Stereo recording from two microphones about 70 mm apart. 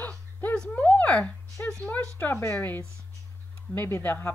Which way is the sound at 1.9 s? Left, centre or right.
Left.